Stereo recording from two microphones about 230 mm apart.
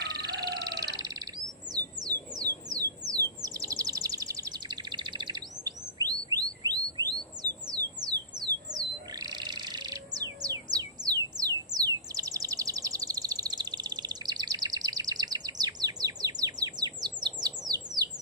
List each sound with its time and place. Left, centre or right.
0.0 s bird: centre
2.7 s a sound: centre
8.5 s bird: centre